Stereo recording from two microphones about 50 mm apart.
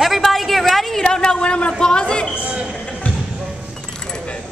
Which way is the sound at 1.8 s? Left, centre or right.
Centre.